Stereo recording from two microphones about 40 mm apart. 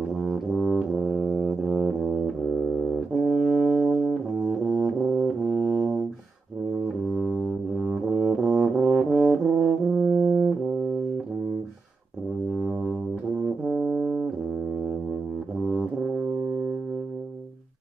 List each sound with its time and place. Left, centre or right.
0.1 s brass instrument: centre
0.9 s brass instrument: centre
1.2 s music: centre
1.7 s brass instrument: centre
7.1 s music: centre
7.8 s brass instrument: centre
12.4 s music: centre
13.4 s brass instrument: centre
15.6 s brass instrument: centre